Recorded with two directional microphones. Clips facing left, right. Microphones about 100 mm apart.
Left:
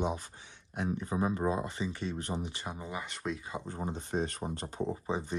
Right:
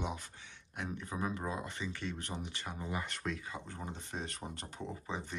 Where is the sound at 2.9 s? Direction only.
5° left (ahead or behind).